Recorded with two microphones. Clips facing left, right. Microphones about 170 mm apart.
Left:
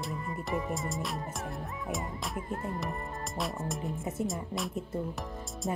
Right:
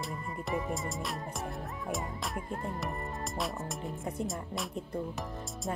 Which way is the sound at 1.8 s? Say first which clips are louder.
Even; centre (ahead or behind).